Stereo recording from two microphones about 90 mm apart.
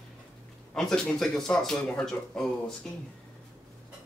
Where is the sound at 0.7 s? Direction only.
5° left (ahead or behind).